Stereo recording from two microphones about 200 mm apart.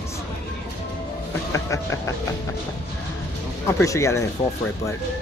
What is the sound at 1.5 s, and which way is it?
Speech, 15° left (ahead or behind).